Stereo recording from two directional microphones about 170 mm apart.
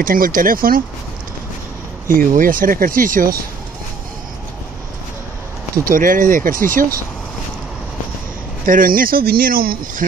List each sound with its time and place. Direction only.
0.0 s speech: 55° right (ahead or behind)
2.0 s speech: 55° right (ahead or behind)
5.9 s speech: 55° right (ahead or behind)
8.6 s speech: 55° right (ahead or behind)